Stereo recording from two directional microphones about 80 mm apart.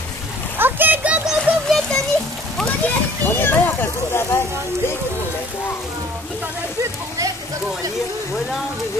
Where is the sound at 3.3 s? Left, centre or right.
Left.